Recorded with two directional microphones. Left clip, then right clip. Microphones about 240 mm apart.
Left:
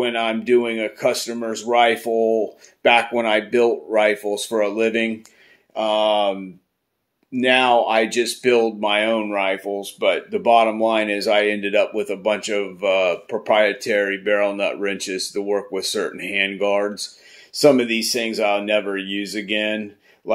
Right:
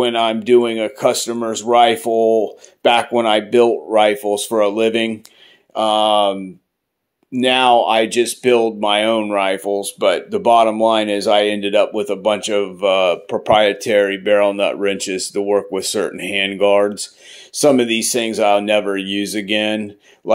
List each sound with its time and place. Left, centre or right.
0.0 s speech: right
7.3 s speech: right